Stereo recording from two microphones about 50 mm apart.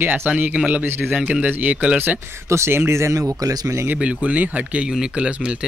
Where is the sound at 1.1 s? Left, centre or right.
Right.